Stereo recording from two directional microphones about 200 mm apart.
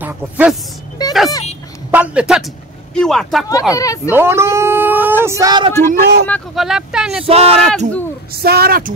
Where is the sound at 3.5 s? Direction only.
15° left (ahead or behind).